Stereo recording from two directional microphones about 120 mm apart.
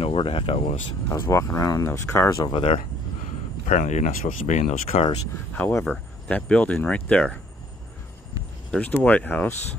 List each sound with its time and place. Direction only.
0.0 s speech: 50° left (ahead or behind)
1.0 s speech: 20° left (ahead or behind)
2.3 s speech: 40° left (ahead or behind)
3.6 s speech: 90° left; by 5.0 s 65° left (ahead or behind)
5.6 s speech: 15° left (ahead or behind)
8.7 s speech: 15° left (ahead or behind)